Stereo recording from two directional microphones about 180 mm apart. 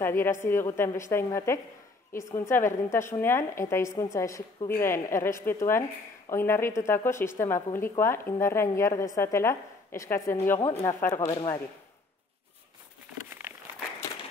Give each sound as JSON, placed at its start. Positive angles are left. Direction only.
{"t": 0.0, "sound": "a woman's voice", "side_deg": 15}